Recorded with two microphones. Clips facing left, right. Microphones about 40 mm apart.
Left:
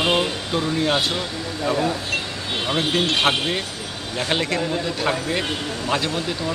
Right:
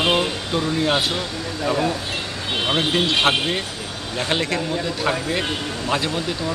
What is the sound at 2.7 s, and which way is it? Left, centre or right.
A man's voice, centre.